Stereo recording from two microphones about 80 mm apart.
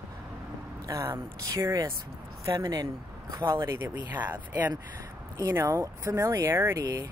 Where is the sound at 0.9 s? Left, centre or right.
Right.